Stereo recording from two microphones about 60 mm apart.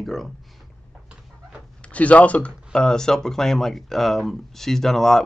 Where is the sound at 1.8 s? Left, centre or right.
Left.